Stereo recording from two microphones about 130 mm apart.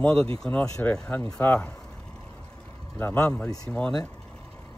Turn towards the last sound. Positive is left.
turn(degrees=10)  # may be behind; listen again after turning